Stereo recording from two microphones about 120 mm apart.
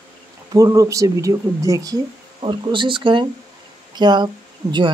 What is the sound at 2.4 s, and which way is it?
Speech, 45° right (ahead or behind).